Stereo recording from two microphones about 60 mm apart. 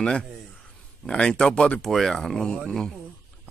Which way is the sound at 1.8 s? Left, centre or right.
Centre.